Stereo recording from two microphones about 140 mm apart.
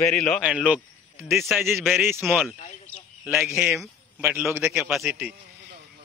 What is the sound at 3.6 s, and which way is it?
A man's voice, centre (ahead or behind).